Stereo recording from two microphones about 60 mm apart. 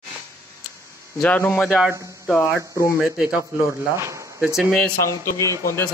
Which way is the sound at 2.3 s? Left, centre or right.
Left.